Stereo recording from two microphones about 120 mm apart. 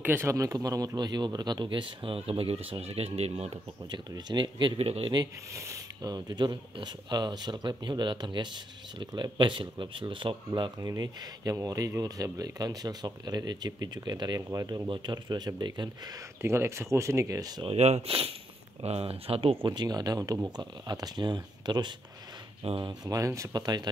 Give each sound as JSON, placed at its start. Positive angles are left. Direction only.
{"t": 0.0, "sound": "speech", "side_deg": -20}
{"t": 3.9, "sound": "speech", "side_deg": -40}
{"t": 5.1, "sound": "speech", "side_deg": -30}
{"t": 10.8, "sound": "speech", "side_deg": -30}
{"t": 14.9, "sound": "speech", "side_deg": -40}
{"t": 16.3, "sound": "speech", "side_deg": -20}
{"t": 17.6, "sound": "speech", "side_deg": -65}
{"t": 23.0, "sound": "speech", "side_deg": -25}